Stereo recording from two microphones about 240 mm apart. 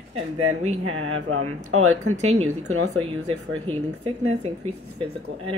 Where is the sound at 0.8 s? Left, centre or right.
Right.